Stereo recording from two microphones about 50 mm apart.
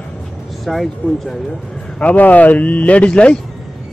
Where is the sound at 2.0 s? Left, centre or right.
Left.